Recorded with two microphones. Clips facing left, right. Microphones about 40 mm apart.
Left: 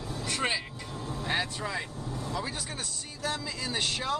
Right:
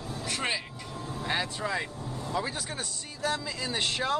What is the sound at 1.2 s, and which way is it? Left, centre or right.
Speech, centre.